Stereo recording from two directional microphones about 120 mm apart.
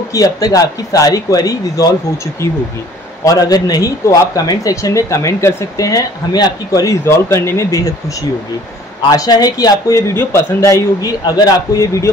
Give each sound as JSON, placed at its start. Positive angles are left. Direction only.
{"t": 0.1, "sound": "speech", "side_deg": 30}
{"t": 3.3, "sound": "speech", "side_deg": 30}
{"t": 9.1, "sound": "speech", "side_deg": 30}